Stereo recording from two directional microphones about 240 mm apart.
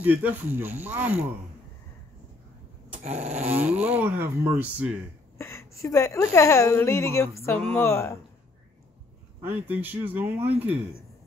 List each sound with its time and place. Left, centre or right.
0.0 s speech: centre
3.0 s dog: right
3.5 s speech: centre
5.4 s a woman's voice: centre
9.4 s speech: centre